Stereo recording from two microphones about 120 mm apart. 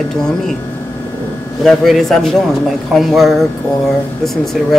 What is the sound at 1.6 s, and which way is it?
Speech, centre (ahead or behind).